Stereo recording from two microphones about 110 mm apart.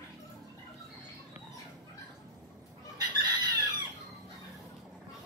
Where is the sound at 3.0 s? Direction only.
40° right (ahead or behind).